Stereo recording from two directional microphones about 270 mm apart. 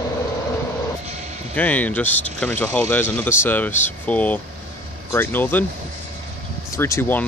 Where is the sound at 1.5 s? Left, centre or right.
Centre.